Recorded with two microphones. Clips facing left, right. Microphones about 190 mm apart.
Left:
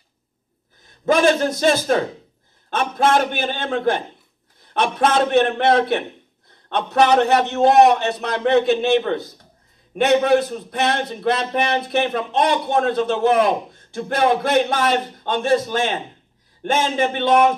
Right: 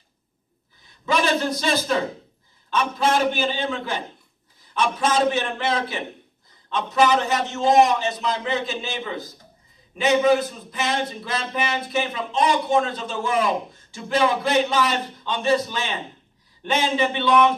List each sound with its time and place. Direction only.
1.0 s a man's voice: 50° left (ahead or behind)